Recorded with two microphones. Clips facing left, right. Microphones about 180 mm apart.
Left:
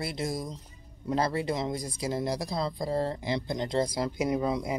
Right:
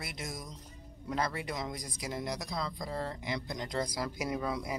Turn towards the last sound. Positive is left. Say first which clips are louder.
# left 6 dB
turn(degrees=20)  # may be behind; listen again after turning